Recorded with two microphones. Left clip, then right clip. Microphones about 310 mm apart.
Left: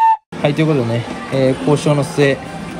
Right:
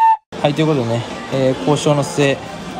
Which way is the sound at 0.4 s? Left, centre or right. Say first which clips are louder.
Even; centre.